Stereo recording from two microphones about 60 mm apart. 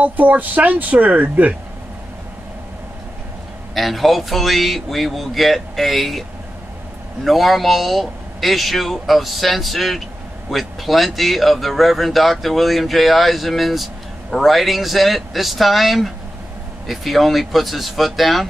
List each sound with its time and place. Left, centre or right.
0.0 s speech: right
3.7 s speech: centre
7.2 s speech: centre